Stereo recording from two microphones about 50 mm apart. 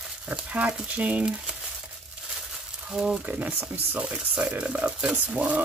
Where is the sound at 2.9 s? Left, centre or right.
Centre.